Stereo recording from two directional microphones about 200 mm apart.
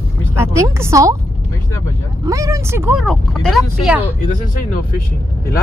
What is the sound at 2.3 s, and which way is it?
Speech, 15° right (ahead or behind).